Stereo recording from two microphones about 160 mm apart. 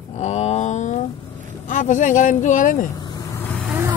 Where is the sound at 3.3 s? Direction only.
10° left (ahead or behind).